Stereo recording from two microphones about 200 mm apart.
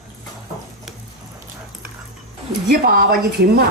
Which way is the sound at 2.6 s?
50° right (ahead or behind).